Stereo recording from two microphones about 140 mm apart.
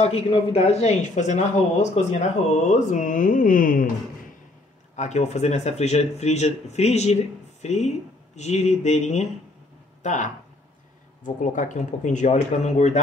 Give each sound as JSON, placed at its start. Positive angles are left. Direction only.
{"t": 0.0, "sound": "speech", "side_deg": 45}
{"t": 4.9, "sound": "speech", "side_deg": 55}